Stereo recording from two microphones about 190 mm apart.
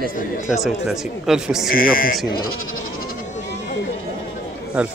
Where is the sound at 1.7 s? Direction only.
50° left (ahead or behind).